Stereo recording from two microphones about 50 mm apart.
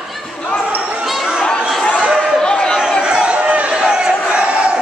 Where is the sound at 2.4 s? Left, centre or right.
Centre.